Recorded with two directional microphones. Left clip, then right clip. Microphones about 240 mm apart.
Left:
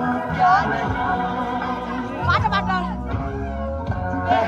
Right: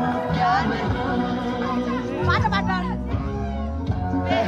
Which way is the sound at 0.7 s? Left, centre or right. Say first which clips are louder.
Left 3 dB; left.